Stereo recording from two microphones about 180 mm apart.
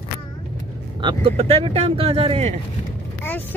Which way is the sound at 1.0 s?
35° right (ahead or behind).